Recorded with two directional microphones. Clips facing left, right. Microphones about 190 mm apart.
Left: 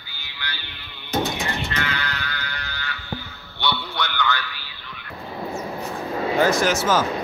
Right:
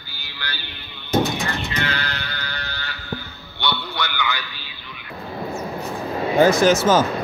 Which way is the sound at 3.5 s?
Centre (ahead or behind).